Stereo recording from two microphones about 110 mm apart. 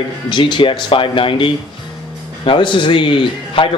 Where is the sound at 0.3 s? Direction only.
45° left (ahead or behind).